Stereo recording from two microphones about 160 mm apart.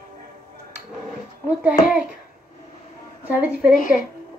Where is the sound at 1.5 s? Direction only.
5° right (ahead or behind).